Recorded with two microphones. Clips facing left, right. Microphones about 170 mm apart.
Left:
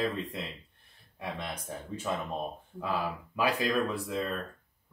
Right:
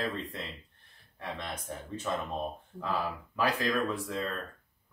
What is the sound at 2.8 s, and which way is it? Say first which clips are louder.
Speech: left 1 dB; 10° left (ahead or behind).